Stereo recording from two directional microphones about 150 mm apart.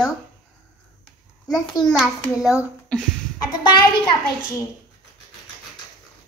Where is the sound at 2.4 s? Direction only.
5° right (ahead or behind).